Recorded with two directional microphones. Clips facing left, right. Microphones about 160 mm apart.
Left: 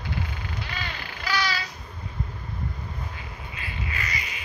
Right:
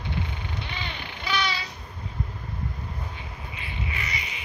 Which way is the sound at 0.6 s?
25° right (ahead or behind).